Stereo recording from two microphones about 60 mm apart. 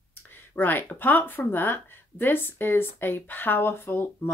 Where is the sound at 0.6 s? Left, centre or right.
Left.